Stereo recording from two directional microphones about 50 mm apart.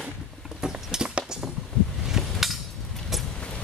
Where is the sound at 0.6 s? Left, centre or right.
Centre.